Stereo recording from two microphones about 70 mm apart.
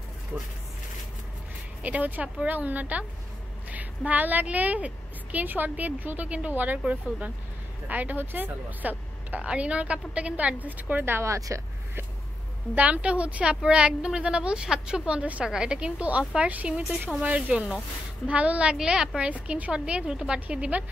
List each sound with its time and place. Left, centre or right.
0.3 s a woman's voice: centre
1.8 s a woman's voice: right
7.9 s a woman's voice: right
11.3 s speech: right
12.7 s a woman's voice: centre